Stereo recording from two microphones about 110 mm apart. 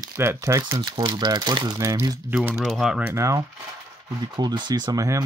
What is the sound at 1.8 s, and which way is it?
Speech, 30° right (ahead or behind).